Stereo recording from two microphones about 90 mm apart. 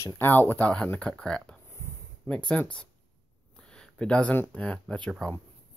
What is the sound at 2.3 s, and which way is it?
Speech, 25° left (ahead or behind).